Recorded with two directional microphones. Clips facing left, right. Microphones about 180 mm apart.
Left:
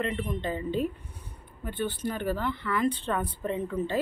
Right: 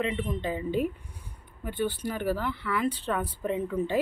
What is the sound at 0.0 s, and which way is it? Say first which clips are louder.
Speech: right 1 dB; centre (ahead or behind).